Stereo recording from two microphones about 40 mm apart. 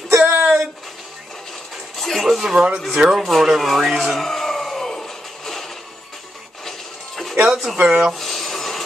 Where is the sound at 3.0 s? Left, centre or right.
Right.